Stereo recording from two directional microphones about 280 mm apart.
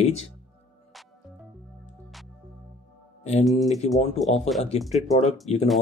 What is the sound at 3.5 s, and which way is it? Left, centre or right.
Speech, centre.